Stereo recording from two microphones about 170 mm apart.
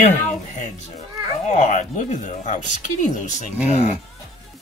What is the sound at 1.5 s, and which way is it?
Speech, 45° left (ahead or behind).